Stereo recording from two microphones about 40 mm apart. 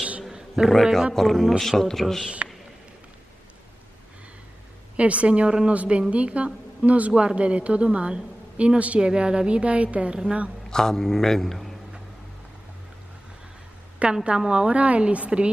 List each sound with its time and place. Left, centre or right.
0.3 s a sound: centre
1.1 s a man's voice: centre
4.9 s a woman's voice: right
10.7 s a man's voice: centre
14.0 s a woman's voice: right